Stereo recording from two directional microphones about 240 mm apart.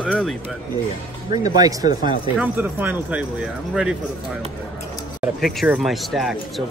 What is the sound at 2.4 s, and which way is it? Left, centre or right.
A man's voice, centre.